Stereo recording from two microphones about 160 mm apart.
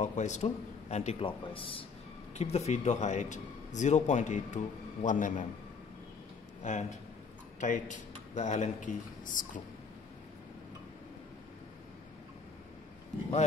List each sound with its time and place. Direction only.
0.0 s a man's voice: 50° left (ahead or behind)
6.6 s a man's voice: 50° left (ahead or behind)